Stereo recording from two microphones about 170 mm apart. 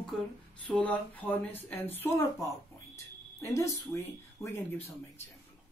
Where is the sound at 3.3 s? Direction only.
15° left (ahead or behind).